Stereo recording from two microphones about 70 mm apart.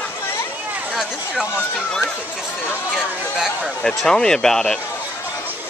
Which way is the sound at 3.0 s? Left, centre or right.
Centre.